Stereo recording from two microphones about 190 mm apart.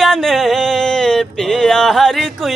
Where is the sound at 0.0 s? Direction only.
Centre (ahead or behind).